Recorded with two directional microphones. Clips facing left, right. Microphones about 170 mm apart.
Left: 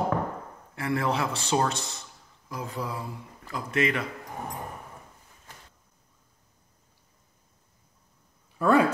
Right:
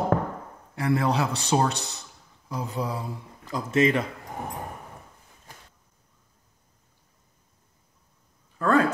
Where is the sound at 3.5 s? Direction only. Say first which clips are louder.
Right 5 dB; 25° right (ahead or behind).